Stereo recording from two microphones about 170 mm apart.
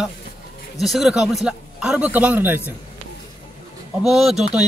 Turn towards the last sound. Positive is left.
turn(degrees=-5)  # may be behind; listen again after turning